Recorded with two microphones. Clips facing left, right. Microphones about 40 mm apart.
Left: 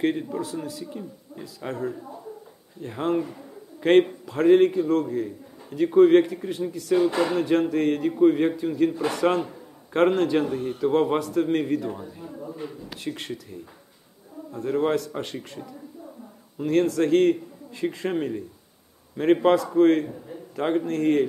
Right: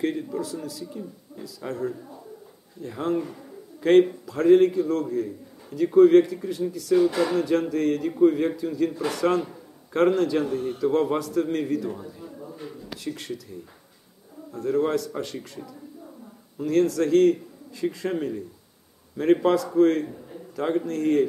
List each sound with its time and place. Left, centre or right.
0.0 s a man's voice: left
10.4 s a man's voice: centre
10.8 s a man's voice: left
16.6 s a man's voice: left
19.4 s a man's voice: left